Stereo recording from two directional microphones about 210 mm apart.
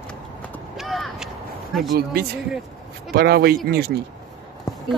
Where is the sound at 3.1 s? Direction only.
50° right (ahead or behind).